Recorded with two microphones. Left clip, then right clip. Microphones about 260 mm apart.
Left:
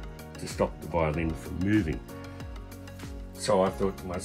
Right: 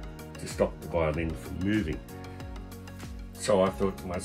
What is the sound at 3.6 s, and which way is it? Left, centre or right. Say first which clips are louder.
Speech: even; centre.